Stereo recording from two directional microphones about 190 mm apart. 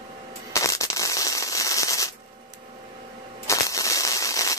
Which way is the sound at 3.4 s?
15° left (ahead or behind).